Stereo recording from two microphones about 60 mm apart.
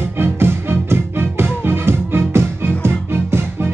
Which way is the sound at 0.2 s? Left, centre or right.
Right.